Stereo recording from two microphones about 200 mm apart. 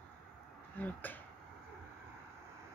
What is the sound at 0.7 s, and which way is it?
Speech, 10° left (ahead or behind).